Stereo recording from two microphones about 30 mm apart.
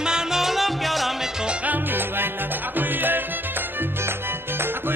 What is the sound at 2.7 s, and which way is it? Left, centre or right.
Music, right.